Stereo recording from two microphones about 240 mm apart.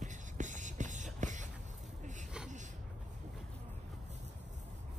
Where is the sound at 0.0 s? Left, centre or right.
Right.